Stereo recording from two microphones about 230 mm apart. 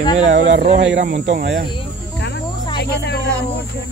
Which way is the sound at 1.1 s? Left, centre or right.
Right.